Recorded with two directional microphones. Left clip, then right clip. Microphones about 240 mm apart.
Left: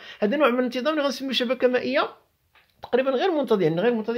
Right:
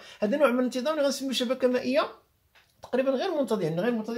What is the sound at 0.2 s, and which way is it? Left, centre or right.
Speech, left.